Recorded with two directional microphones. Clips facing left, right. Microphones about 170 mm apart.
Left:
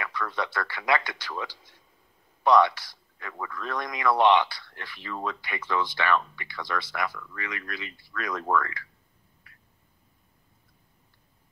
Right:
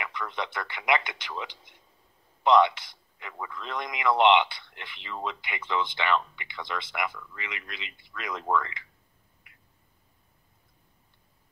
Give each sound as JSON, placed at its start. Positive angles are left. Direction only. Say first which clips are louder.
{"t": 0.0, "sound": "a man's voice", "louder": "left 2 dB", "side_deg": -20}